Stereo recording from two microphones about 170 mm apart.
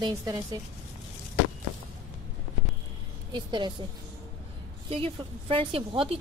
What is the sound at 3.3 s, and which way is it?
Speech, 25° right (ahead or behind).